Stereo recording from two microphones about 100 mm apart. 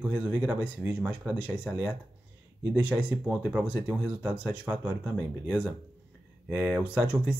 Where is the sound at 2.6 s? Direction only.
15° right (ahead or behind).